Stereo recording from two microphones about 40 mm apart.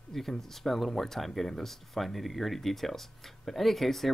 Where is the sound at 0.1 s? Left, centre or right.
Centre.